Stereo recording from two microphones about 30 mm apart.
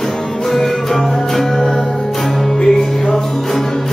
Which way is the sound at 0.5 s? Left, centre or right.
Centre.